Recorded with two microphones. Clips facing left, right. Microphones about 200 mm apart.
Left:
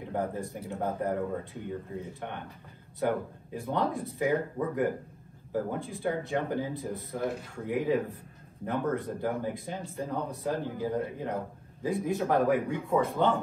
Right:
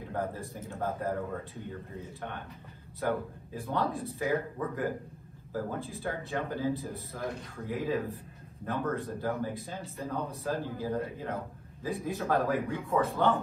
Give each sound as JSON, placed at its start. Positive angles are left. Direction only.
{"t": 0.1, "sound": "speech", "side_deg": 20}
{"t": 3.0, "sound": "speech", "side_deg": 15}